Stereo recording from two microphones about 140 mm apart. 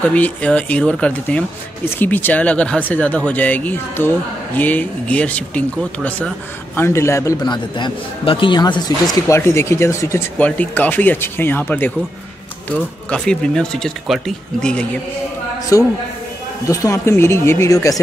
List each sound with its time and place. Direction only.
0.0 s speech: 10° left (ahead or behind)
6.8 s a man's voice: 20° left (ahead or behind)
15.7 s a man's voice: 25° left (ahead or behind)